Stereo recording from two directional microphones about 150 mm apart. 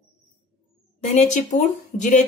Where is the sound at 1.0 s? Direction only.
55° left (ahead or behind).